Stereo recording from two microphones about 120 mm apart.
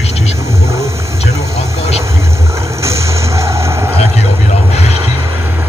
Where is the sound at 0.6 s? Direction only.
25° right (ahead or behind).